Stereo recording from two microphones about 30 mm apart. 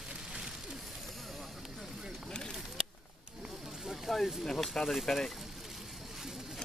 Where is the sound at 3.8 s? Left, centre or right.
Centre.